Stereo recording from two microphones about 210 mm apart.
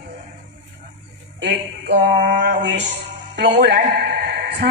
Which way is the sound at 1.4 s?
55° right (ahead or behind).